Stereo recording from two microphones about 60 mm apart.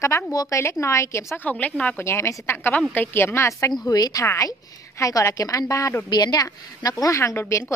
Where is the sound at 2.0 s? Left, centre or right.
Left.